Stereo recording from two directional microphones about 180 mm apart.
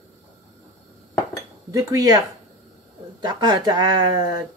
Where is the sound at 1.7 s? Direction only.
20° right (ahead or behind).